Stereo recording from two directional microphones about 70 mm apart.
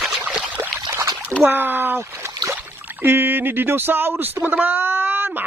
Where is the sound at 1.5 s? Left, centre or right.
Right.